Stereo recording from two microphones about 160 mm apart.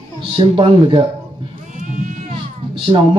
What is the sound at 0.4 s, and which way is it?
Speech, 35° right (ahead or behind).